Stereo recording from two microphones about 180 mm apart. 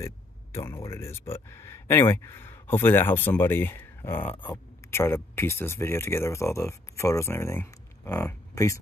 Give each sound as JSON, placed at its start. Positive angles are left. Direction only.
{"t": 0.0, "sound": "speech", "side_deg": 15}
{"t": 4.3, "sound": "speech", "side_deg": 25}
{"t": 4.9, "sound": "speech", "side_deg": 15}